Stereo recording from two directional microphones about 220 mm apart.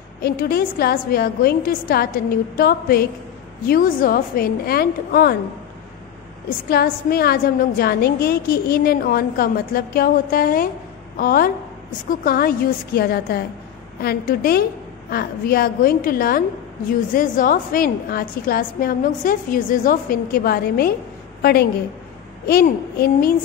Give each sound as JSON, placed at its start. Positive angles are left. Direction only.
{"t": 0.2, "sound": "a woman's voice", "side_deg": 45}
{"t": 6.7, "sound": "a woman's voice", "side_deg": 45}